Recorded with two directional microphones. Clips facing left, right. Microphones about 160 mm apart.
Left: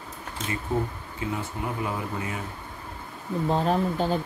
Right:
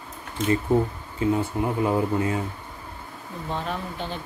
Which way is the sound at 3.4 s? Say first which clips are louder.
Left 6 dB; 35° left (ahead or behind).